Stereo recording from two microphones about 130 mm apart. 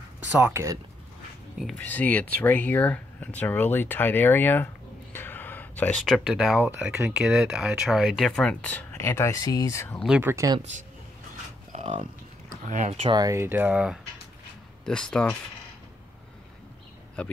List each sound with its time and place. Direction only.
0.3 s speech: 20° right (ahead or behind)
1.8 s speech: 10° left (ahead or behind)
5.1 s a sound: 15° left (ahead or behind); by 6.6 s 5° right (ahead or behind)
6.6 s speech: 10° right (ahead or behind)
8.3 s speech: 5° left (ahead or behind); by 9.9 s 20° left (ahead or behind)
10.2 s speech: 20° right (ahead or behind)
11.7 s a sound: 65° right (ahead or behind)
12.6 s speech: 70° right (ahead or behind)
13.0 s speech: 35° right (ahead or behind)
13.3 s speech: 15° right (ahead or behind)
14.9 s speech: 5° left (ahead or behind)